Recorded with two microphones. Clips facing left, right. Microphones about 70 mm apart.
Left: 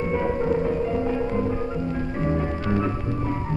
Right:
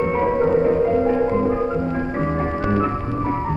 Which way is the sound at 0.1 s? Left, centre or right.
Right.